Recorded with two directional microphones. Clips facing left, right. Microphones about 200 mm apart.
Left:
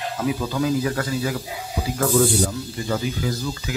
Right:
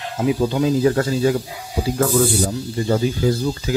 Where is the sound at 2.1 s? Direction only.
5° right (ahead or behind).